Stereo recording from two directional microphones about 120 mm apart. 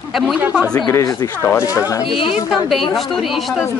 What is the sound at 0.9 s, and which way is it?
Speech, 30° left (ahead or behind).